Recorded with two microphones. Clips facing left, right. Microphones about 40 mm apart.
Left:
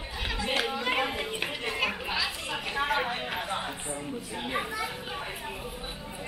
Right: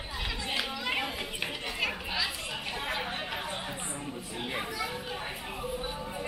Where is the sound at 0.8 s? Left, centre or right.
Centre.